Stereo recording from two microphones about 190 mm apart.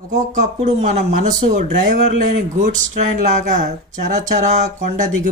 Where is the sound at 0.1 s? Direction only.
40° right (ahead or behind).